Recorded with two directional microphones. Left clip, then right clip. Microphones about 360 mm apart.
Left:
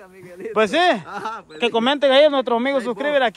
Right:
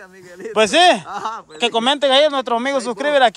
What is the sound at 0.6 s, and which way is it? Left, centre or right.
Speech, centre.